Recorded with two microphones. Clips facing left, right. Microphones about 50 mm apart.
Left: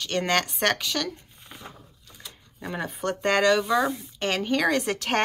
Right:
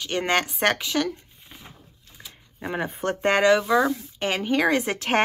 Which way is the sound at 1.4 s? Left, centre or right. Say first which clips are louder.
Left 3 dB; centre.